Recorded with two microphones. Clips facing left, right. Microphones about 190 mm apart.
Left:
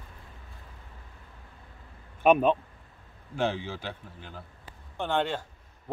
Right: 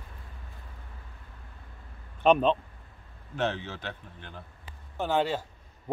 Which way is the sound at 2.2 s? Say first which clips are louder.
Left 1 dB; 10° left (ahead or behind).